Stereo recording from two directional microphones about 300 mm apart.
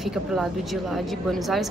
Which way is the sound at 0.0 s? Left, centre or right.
Centre.